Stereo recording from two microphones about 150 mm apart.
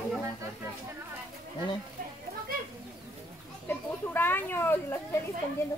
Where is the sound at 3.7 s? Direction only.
15° left (ahead or behind).